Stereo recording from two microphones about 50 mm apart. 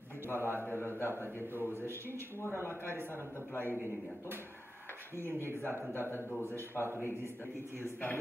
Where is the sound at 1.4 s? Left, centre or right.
Right.